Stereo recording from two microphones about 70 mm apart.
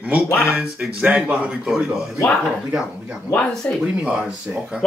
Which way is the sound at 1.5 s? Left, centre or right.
Centre.